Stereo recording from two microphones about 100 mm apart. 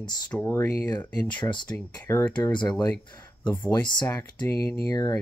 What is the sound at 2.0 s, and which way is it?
Speech, 25° left (ahead or behind).